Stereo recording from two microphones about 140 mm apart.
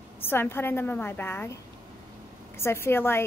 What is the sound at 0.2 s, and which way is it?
A woman's voice, 15° left (ahead or behind).